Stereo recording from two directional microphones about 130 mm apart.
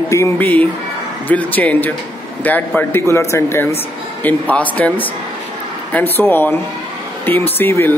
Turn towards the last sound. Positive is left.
turn(degrees=15)  # may be behind; listen again after turning